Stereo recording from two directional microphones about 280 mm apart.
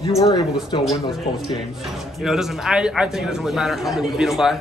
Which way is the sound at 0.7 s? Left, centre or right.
Centre.